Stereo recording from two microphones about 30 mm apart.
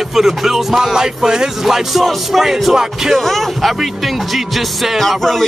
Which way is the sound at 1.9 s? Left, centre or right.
Centre.